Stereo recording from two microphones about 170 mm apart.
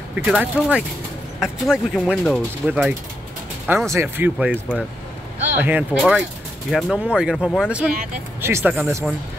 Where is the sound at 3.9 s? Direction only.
15° right (ahead or behind).